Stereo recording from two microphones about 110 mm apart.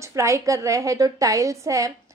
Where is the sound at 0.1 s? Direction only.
30° right (ahead or behind).